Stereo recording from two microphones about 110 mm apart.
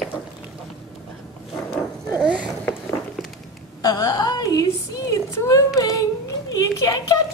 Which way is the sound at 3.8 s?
35° left (ahead or behind).